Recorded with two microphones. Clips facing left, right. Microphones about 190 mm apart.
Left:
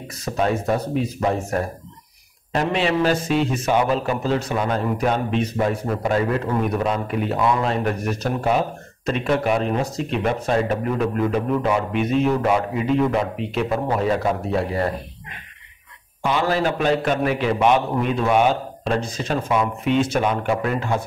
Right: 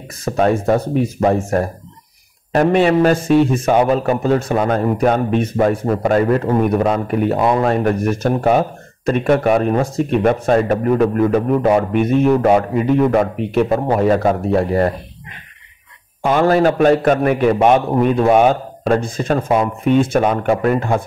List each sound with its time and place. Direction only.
0.2 s a man's voice: 50° right (ahead or behind)
16.3 s a man's voice: 50° right (ahead or behind)